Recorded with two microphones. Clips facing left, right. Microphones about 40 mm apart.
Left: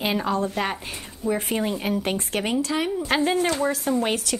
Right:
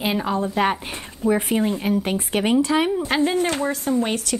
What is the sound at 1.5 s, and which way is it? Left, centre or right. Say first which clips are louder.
Speech: right 4 dB; centre.